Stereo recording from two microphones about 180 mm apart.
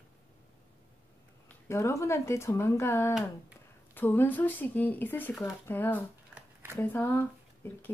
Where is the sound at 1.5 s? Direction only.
15° left (ahead or behind).